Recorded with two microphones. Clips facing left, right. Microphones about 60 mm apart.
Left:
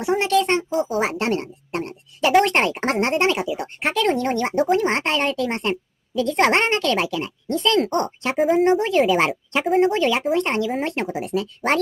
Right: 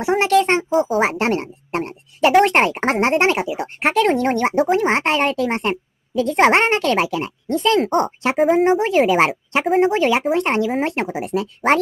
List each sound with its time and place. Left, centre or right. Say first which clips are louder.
0.0 s speech: right 3 dB; right
0.7 s speech: right 5 dB; centre
0.9 s a sound: right 3 dB; right
2.4 s a woman's voice: right 4 dB; right
4.5 s a woman's voice: right 1 dB; centre
8.4 s speech: right 2 dB; centre
9.7 s speech: right 1 dB; centre
9.9 s a woman's voice: right 3 dB; right